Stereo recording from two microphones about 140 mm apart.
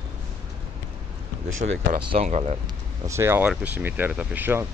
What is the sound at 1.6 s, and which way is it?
Speech, 80° right.